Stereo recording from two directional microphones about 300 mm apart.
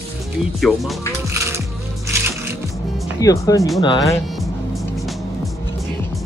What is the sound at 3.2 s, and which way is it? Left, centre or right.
Speech, centre.